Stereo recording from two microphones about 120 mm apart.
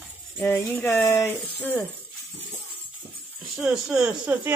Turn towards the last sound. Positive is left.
turn(degrees=-5)  # may be behind; listen again after turning